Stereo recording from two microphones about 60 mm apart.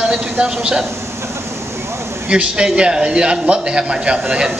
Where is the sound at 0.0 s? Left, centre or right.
Centre.